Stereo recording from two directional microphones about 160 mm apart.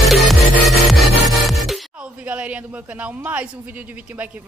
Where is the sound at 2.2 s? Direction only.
10° right (ahead or behind).